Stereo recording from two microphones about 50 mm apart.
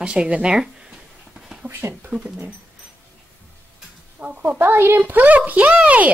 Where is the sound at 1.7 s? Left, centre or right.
Right.